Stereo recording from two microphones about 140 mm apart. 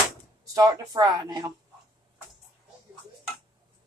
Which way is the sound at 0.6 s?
30° right (ahead or behind).